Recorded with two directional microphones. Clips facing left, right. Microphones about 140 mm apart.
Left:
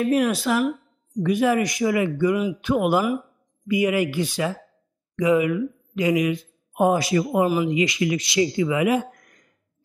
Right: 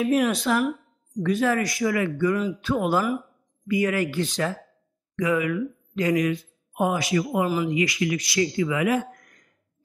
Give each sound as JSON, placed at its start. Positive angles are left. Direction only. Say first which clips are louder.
{"t": 0.0, "sound": "speech", "louder": "left 1 dB", "side_deg": 0}
{"t": 1.2, "sound": "speech", "louder": "left 3 dB", "side_deg": 15}
{"t": 5.2, "sound": "speech", "louder": "left 4 dB", "side_deg": 20}
{"t": 6.8, "sound": "speech", "louder": "left 4 dB", "side_deg": 35}
{"t": 7.4, "sound": "speech", "louder": "left 3 dB", "side_deg": 20}